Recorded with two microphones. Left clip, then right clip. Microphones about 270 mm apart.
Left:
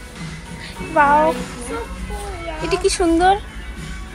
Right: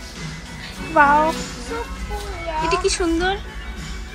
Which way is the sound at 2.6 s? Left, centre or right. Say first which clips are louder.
Left 2 dB; centre.